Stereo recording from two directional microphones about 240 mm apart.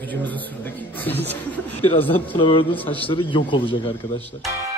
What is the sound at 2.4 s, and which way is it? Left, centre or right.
A man's voice, left.